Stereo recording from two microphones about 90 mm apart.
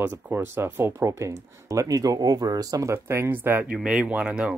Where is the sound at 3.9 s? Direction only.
10° right (ahead or behind).